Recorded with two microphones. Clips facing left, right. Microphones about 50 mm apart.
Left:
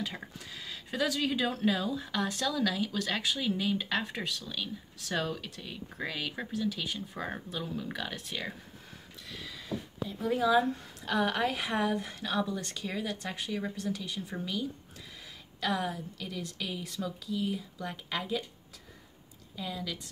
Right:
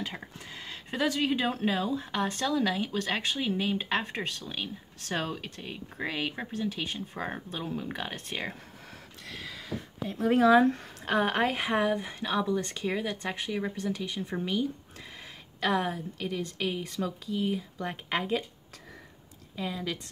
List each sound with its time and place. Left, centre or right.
0.4 s speech: right
9.2 s speech: right
19.5 s speech: right